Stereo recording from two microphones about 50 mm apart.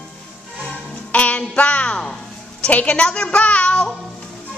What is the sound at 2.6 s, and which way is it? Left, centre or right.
A woman's voice, left.